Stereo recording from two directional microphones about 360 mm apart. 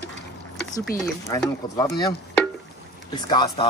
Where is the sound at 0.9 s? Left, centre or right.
Centre.